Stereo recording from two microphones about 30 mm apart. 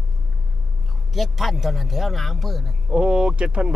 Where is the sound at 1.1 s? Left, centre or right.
Centre.